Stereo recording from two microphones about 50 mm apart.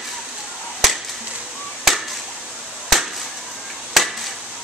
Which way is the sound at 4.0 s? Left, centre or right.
Centre.